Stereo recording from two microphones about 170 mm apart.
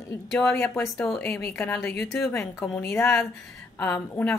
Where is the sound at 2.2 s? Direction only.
15° left (ahead or behind).